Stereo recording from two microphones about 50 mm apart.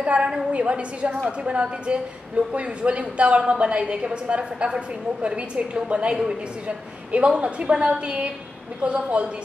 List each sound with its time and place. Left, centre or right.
0.0 s a woman's voice: right